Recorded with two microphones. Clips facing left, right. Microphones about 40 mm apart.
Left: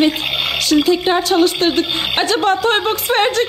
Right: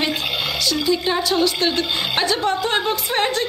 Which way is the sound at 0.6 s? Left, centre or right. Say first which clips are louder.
Left 7 dB; left.